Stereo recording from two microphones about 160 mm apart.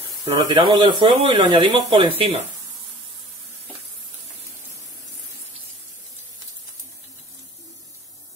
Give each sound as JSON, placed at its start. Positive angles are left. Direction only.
{"t": 0.2, "sound": "speech", "side_deg": -30}